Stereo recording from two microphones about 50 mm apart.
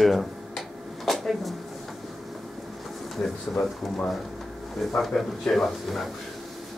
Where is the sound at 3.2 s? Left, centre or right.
Centre.